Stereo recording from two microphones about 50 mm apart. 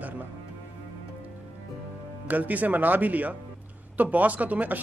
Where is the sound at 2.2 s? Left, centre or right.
Right.